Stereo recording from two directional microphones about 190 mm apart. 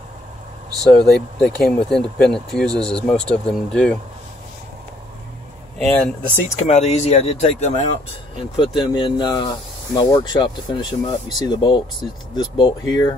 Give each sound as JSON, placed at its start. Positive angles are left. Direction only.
{"t": 1.1, "sound": "speech", "side_deg": 0}
{"t": 5.8, "sound": "speech", "side_deg": 5}
{"t": 6.7, "sound": "speech", "side_deg": 35}
{"t": 8.4, "sound": "speech", "side_deg": 25}